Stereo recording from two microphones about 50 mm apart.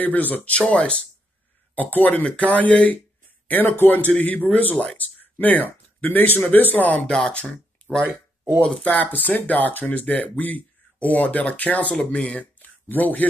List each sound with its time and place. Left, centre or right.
0.0 s speech: left
0.6 s speech: left
1.8 s speech: left
3.4 s speech: left
7.1 s speech: centre
8.8 s speech: left
12.1 s speech: left
12.5 s a sound: left